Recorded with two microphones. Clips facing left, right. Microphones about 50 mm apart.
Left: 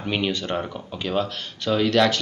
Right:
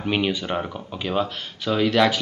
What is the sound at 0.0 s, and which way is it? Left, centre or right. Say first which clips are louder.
Speech: right 2 dB; centre.